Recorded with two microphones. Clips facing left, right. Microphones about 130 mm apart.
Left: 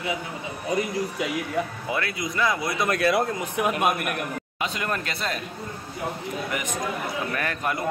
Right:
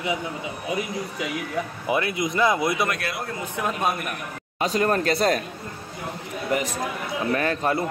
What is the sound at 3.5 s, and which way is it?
Speech, 15° left (ahead or behind).